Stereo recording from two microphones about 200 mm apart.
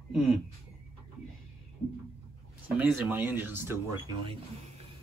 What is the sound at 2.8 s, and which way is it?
Speech, 10° right (ahead or behind).